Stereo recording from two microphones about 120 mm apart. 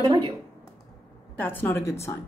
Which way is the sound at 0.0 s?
40° right (ahead or behind).